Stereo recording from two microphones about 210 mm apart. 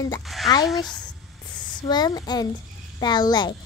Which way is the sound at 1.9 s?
20° left (ahead or behind).